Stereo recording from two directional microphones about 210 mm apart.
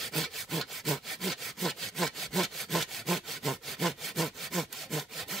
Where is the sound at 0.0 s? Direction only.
Centre (ahead or behind).